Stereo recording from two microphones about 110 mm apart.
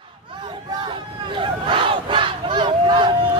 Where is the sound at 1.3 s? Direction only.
50° right (ahead or behind).